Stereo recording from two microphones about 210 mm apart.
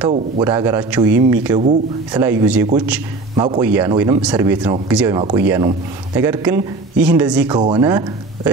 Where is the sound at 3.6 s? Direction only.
10° right (ahead or behind).